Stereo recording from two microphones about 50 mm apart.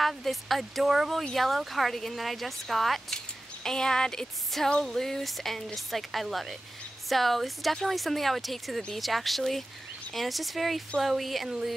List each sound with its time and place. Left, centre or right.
0.0 s speech: centre
3.6 s speech: centre